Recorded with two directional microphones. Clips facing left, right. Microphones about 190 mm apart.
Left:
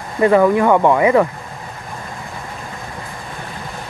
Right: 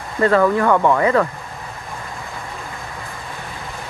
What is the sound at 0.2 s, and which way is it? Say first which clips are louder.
Speech: left 3 dB; 15° left (ahead or behind).